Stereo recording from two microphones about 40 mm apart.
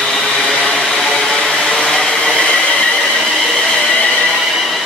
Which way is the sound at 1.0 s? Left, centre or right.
Centre.